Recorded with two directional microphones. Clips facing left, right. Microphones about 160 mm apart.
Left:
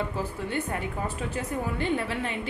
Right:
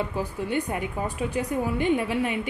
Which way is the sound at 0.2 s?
15° right (ahead or behind).